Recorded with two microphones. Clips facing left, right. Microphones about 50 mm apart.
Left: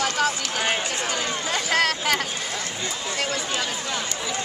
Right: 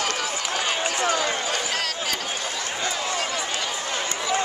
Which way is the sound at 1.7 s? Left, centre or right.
Left.